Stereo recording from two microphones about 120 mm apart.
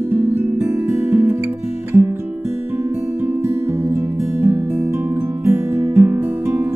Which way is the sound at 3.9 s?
20° right (ahead or behind).